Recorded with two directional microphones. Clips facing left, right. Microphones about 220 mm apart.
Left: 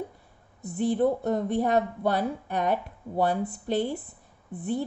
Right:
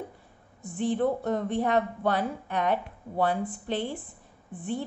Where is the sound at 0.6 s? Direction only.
40° left (ahead or behind).